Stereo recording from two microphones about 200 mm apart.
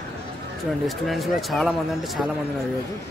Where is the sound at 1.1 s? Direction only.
Centre (ahead or behind).